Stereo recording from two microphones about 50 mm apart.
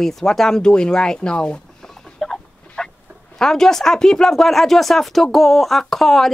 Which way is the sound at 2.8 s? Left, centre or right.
Centre.